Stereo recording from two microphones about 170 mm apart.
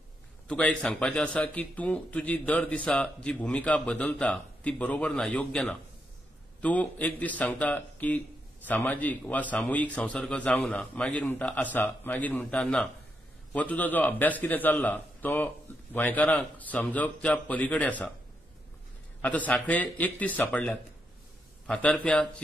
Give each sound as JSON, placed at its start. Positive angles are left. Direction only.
{"t": 0.5, "sound": "speech", "side_deg": 5}
{"t": 19.2, "sound": "speech", "side_deg": 10}